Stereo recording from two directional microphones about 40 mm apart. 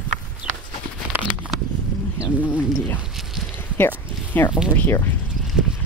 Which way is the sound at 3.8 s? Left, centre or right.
Left.